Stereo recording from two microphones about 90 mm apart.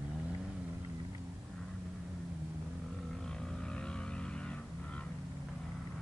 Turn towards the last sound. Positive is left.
turn(degrees=10)  # may be behind; listen again after turning